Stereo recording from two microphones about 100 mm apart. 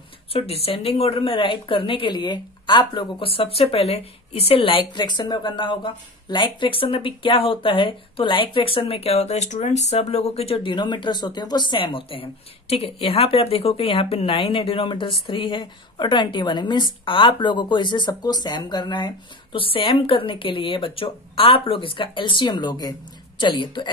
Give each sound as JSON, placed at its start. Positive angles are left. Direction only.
{"t": 0.3, "sound": "a woman's voice", "side_deg": 75}